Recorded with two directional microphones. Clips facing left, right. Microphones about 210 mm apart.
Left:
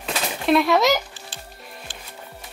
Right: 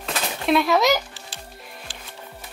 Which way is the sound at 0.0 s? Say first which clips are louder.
Left 1 dB; centre (ahead or behind).